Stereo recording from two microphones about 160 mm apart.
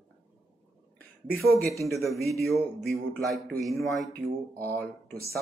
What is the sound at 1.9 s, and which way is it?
Speech, centre (ahead or behind).